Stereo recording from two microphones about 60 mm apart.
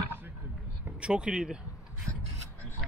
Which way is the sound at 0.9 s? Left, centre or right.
Centre.